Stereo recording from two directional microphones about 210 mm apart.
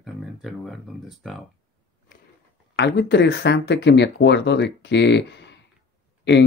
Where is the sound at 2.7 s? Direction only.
55° left (ahead or behind).